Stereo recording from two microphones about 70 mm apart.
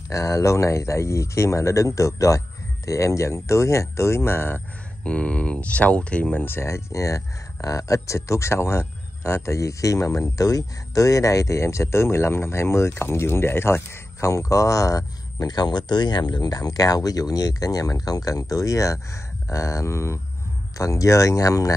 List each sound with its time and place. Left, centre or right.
0.1 s speech: left
5.0 s speech: centre
6.4 s speech: left
15.5 s speech: left